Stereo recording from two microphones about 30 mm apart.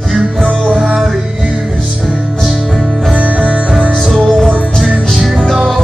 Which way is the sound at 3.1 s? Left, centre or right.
Right.